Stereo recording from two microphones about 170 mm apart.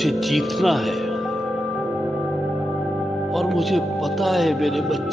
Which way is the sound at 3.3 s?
Centre (ahead or behind).